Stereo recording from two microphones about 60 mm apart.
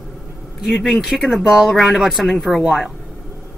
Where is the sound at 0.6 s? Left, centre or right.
Centre.